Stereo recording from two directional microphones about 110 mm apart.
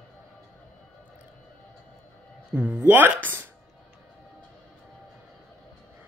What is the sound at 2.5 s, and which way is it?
Speech, 10° right (ahead or behind).